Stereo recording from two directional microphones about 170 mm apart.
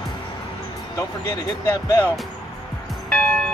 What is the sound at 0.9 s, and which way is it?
Speech, 15° left (ahead or behind).